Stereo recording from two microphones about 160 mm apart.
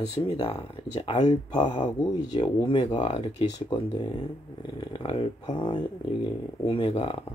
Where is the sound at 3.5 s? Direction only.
30° left (ahead or behind).